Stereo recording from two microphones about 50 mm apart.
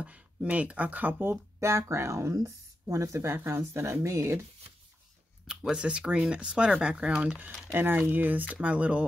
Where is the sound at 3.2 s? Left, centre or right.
Right.